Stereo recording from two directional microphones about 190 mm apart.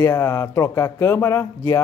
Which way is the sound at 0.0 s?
15° left (ahead or behind).